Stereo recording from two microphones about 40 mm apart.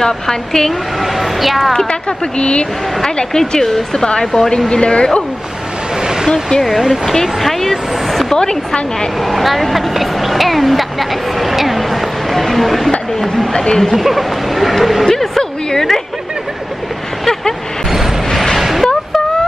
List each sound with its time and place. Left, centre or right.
0.0 s speech: centre
1.0 s speech: centre
1.8 s speech: left
7.3 s speech: centre
8.3 s speech: centre
9.2 s speech: centre
13.5 s speech: centre
13.9 s speech: centre
15.0 s a woman's voice: centre
18.3 s a sound: centre
18.6 s a sound: centre